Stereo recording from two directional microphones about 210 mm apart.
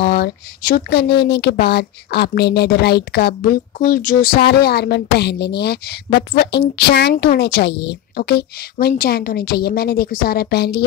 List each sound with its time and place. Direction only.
0.0 s a woman's voice: 50° left (ahead or behind)